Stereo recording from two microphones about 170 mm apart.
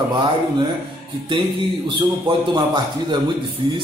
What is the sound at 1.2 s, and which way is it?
A man's voice, 30° right (ahead or behind).